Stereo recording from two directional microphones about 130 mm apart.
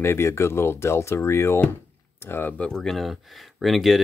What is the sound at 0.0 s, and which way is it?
Speech, 20° left (ahead or behind).